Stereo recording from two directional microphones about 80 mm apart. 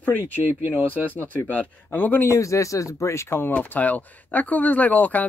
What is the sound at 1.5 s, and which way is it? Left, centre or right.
Speech, left.